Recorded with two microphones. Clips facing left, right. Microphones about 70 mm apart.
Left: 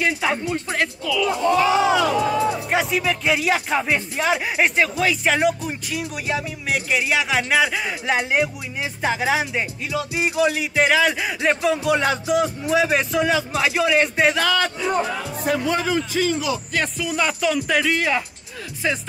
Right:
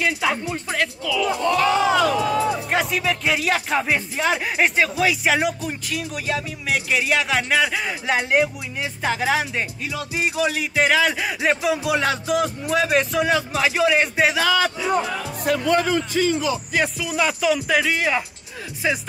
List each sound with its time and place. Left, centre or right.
0.0 s speech: centre
15.6 s a man's voice: right
16.7 s speech: centre
18.8 s music: centre